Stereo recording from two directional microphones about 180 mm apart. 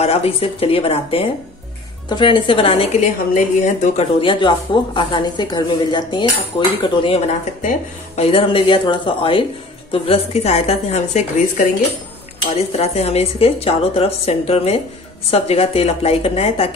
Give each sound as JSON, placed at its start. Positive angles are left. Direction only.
{"t": 0.0, "sound": "speech", "side_deg": 35}
{"t": 4.2, "sound": "a woman's voice", "side_deg": 30}